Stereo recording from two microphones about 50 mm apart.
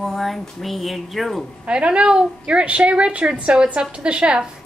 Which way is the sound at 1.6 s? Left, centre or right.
Right.